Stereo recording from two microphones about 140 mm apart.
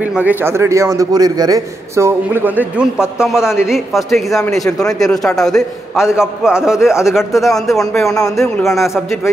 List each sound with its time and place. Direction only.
0.0 s a man's voice: 10° right (ahead or behind)
2.6 s a man's voice: 5° right (ahead or behind)
8.1 s speech: 25° left (ahead or behind)
8.6 s a man's voice: centre (ahead or behind)